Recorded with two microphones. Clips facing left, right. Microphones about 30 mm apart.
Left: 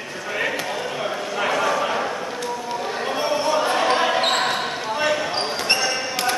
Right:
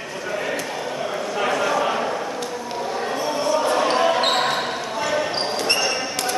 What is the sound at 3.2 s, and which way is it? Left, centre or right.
Basketball bounce, left.